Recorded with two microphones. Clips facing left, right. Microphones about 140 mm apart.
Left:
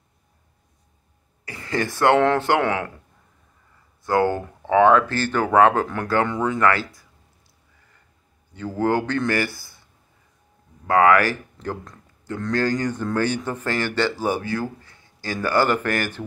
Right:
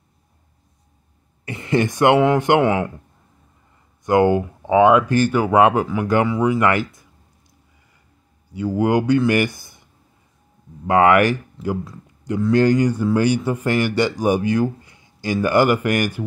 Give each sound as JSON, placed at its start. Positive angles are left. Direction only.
{"t": 1.4, "sound": "speech", "side_deg": -25}
{"t": 4.0, "sound": "a man's voice", "side_deg": -20}
{"t": 8.5, "sound": "a man's voice", "side_deg": -15}
{"t": 10.9, "sound": "speech", "side_deg": -20}
{"t": 11.5, "sound": "a man's voice", "side_deg": -5}